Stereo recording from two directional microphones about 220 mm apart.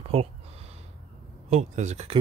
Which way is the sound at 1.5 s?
30° right (ahead or behind).